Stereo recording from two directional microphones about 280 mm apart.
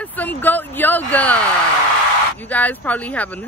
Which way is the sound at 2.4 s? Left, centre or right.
Centre.